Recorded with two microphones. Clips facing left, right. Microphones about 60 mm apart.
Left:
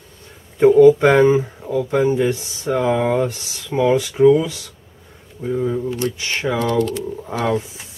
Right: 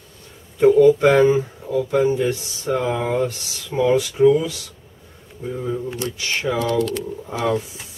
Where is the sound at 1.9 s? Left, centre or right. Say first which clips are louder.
Left 2 dB; left.